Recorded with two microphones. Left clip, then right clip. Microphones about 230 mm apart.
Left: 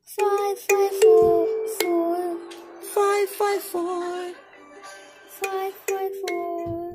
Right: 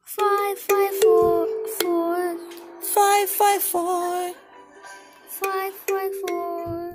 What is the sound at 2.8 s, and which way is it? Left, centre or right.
Music, right.